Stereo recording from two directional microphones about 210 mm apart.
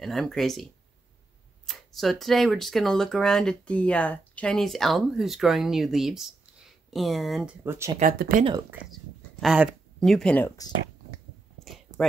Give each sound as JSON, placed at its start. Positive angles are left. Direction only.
{"t": 0.0, "sound": "speech", "side_deg": 0}
{"t": 1.7, "sound": "speech", "side_deg": 0}
{"t": 8.0, "sound": "speech", "side_deg": -40}
{"t": 8.9, "sound": "speech", "side_deg": 0}
{"t": 11.6, "sound": "a sound", "side_deg": 0}